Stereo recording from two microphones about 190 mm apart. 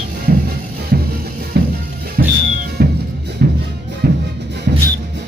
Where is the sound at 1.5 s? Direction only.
60° right (ahead or behind).